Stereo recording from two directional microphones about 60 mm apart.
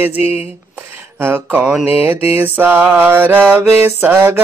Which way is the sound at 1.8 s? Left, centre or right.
Right.